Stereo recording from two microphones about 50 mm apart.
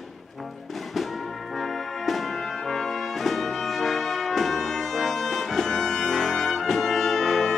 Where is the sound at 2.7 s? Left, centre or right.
Centre.